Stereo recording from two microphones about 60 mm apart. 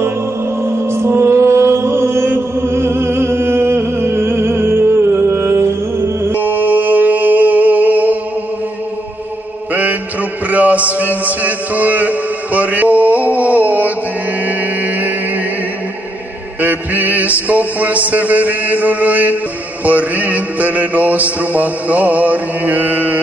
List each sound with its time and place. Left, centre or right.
0.7 s mantra: right
6.4 s music: right
10.5 s music: right
16.6 s a sound: right
19.8 s mantra: right